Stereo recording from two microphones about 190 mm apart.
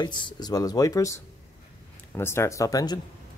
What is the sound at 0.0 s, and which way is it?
A man's voice, 25° left (ahead or behind).